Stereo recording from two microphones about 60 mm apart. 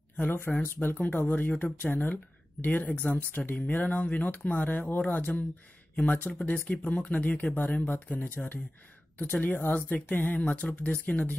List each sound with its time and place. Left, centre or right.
0.2 s speech: left